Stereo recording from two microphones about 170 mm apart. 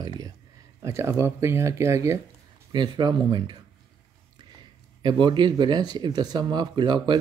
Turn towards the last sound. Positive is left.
turn(degrees=-25)  # may be behind; listen again after turning